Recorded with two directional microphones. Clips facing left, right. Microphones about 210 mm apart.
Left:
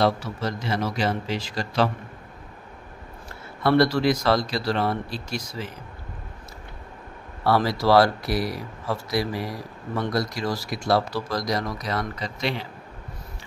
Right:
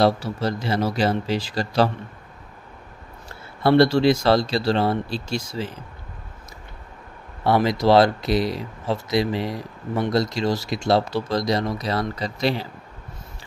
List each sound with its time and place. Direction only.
0.0 s speech: 35° right (ahead or behind)
3.6 s speech: 25° right (ahead or behind)
7.4 s speech: 20° right (ahead or behind); by 12.6 s 35° right (ahead or behind)